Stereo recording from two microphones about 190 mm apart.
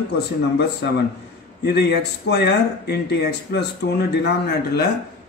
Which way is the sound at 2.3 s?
60° left (ahead or behind).